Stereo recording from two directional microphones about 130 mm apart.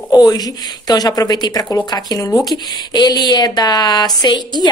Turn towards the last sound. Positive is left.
turn(degrees=35)  # may be behind; listen again after turning